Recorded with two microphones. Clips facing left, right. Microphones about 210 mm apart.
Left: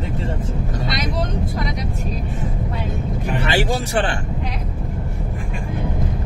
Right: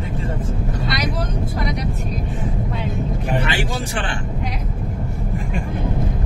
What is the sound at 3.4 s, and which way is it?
Speech, 40° left (ahead or behind).